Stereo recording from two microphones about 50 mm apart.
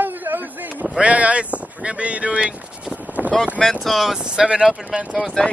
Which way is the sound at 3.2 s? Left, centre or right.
Right.